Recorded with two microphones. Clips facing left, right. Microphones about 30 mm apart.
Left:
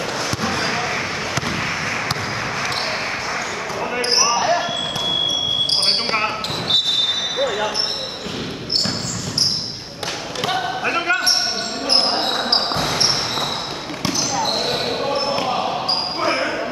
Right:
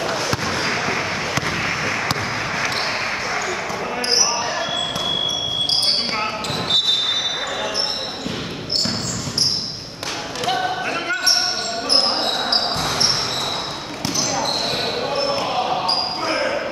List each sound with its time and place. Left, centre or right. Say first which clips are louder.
0.4 s fireworks: left 1 dB; centre
4.2 s basketball bounce: left 4 dB; centre
6.1 s basketball bounce: left 2 dB; centre
10.4 s basketball bounce: even; centre
14.4 s basketball bounce: left 1 dB; centre
16.2 s basketball bounce: left 2 dB; centre